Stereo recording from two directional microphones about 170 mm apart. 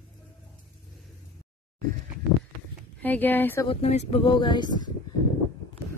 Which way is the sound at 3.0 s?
10° left (ahead or behind).